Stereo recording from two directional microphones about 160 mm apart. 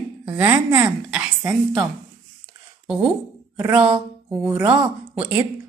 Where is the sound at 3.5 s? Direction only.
10° right (ahead or behind).